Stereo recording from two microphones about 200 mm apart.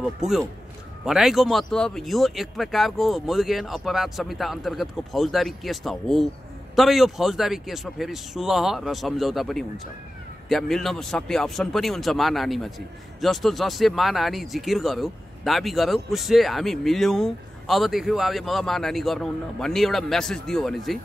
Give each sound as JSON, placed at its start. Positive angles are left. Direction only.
{"t": 0.0, "sound": "speech", "side_deg": 0}